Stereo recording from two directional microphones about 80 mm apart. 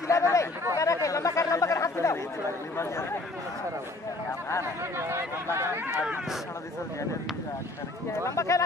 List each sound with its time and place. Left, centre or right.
0.1 s speech: left
4.3 s speech: left
4.9 s a sound: right
8.2 s speech: left